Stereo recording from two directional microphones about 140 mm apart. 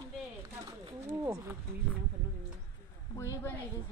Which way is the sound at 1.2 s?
20° right (ahead or behind).